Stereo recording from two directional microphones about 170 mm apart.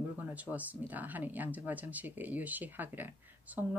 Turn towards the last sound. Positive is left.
turn(degrees=-10)  # may be behind; listen again after turning